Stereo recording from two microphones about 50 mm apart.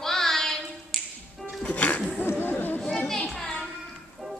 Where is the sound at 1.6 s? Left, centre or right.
Left.